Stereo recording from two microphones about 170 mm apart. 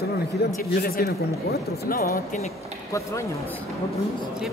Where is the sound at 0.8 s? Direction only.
65° left (ahead or behind).